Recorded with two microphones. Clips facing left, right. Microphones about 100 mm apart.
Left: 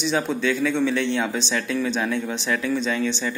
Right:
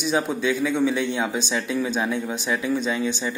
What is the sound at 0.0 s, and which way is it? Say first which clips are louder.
Speech: even; 10° right (ahead or behind).